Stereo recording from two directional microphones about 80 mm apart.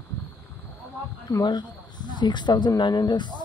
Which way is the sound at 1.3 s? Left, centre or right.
Left.